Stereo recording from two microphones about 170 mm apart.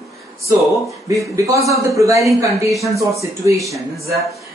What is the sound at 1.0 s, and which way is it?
A man's voice, 20° right (ahead or behind).